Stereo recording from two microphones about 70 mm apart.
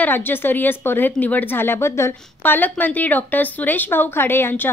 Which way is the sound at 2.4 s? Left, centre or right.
Left.